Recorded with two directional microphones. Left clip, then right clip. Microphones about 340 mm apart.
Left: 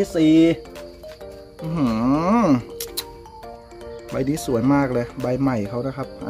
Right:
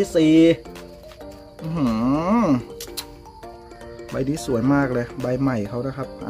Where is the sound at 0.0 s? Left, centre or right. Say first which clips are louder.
Right 1 dB; centre.